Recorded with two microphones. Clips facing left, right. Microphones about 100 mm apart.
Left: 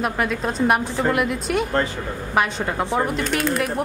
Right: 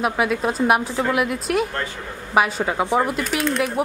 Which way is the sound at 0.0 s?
5° right (ahead or behind).